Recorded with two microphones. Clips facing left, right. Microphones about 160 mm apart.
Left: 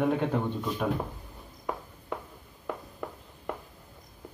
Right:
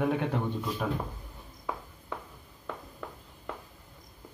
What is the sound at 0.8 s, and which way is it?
Speech, 10° left (ahead or behind).